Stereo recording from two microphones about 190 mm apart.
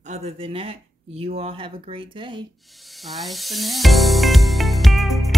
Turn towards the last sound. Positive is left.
turn(degrees=0)  # may be behind; listen again after turning